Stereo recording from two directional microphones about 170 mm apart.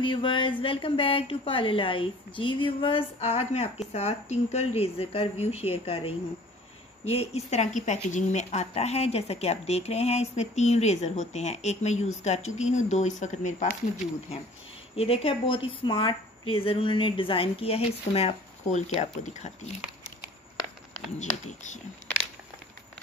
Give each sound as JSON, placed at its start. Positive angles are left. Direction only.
{"t": 0.0, "sound": "a woman's voice", "side_deg": 30}
{"t": 15.0, "sound": "a woman's voice", "side_deg": 35}